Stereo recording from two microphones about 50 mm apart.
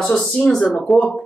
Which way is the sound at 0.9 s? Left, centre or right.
Centre.